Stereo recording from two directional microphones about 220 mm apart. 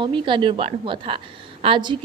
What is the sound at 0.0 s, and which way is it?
A woman's voice, 20° right (ahead or behind).